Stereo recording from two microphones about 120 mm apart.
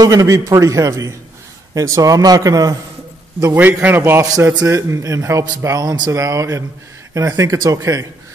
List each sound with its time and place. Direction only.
0.0 s speech: 30° right (ahead or behind)
3.3 s speech: 20° right (ahead or behind)